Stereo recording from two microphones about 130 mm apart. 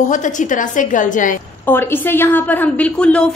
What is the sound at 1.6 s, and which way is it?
A woman's voice, 15° left (ahead or behind).